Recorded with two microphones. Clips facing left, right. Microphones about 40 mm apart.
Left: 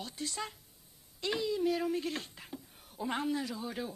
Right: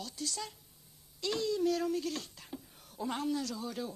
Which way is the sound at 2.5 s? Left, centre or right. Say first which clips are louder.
Even; centre.